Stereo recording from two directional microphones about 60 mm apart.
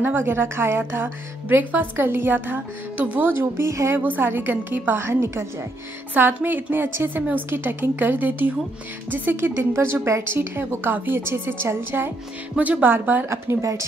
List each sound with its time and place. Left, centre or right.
0.0 s a woman's voice: right
3.9 s a woman's voice: right
6.1 s a woman's voice: right
12.5 s a woman's voice: right
13.3 s speech: right